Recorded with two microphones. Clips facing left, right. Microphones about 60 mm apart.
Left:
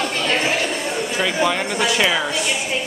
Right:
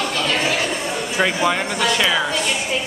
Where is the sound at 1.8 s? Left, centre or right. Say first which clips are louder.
Left 1 dB; centre.